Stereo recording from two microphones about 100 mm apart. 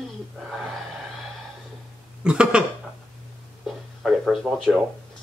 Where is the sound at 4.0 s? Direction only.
5° right (ahead or behind).